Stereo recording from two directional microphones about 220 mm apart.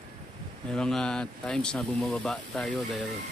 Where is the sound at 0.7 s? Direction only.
5° left (ahead or behind).